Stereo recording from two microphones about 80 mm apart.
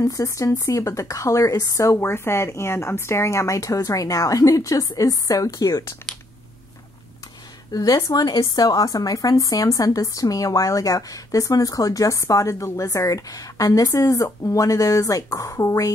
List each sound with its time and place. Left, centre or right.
0.0 s speech: left
2.0 s speech: left
7.7 s speech: left